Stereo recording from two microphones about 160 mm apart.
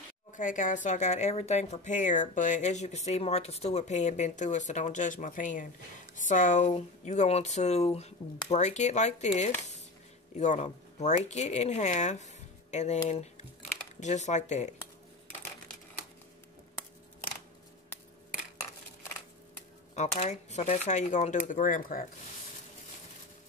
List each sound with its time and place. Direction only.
0.4 s speech: 55° left (ahead or behind)
20.0 s speech: 45° left (ahead or behind)